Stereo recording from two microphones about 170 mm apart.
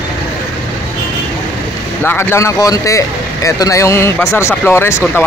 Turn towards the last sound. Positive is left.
turn(degrees=15)  # may be behind; listen again after turning